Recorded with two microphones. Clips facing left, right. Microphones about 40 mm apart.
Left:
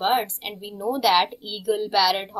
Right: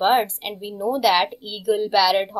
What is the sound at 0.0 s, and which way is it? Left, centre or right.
A woman's voice, centre.